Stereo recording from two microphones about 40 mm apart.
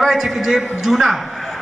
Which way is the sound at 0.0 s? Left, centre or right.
Centre.